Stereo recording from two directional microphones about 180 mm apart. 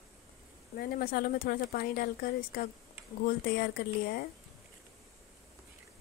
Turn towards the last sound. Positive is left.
turn(degrees=60)  # may be behind; listen again after turning